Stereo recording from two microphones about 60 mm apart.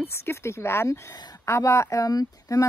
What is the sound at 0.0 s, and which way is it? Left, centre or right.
Speech, left.